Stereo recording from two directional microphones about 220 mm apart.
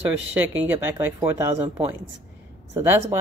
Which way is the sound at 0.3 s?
10° right (ahead or behind).